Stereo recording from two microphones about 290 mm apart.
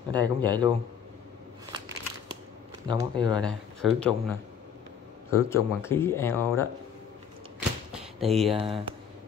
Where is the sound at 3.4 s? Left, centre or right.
Centre.